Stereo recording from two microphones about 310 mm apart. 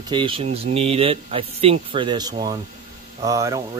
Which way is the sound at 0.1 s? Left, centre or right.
Centre.